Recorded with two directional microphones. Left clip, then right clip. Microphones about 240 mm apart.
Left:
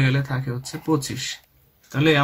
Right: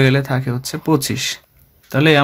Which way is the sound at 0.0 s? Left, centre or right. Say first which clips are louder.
Right 9 dB; right.